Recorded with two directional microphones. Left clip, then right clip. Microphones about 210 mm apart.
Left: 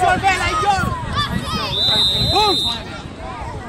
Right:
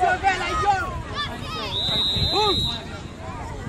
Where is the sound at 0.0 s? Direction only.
40° left (ahead or behind).